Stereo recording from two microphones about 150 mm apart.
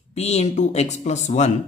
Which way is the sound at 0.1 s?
45° left (ahead or behind).